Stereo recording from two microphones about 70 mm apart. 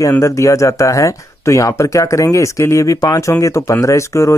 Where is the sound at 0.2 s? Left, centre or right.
Left.